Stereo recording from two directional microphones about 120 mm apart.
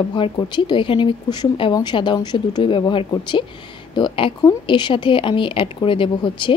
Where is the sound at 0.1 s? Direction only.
40° left (ahead or behind).